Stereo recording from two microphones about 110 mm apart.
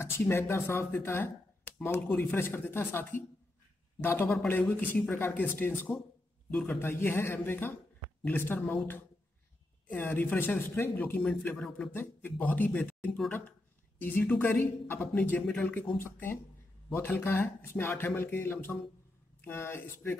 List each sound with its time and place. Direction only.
0.0 s a man's voice: 20° left (ahead or behind)
6.8 s a man's voice: 20° left (ahead or behind)